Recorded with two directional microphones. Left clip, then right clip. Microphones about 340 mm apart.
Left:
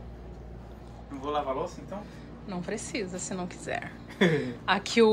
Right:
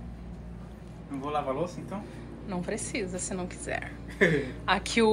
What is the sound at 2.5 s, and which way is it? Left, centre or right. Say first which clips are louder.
A woman's voice: right 1 dB; centre.